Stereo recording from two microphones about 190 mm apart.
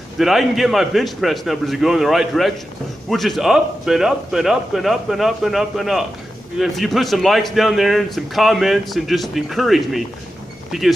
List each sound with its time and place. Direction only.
0.2 s speech: centre (ahead or behind)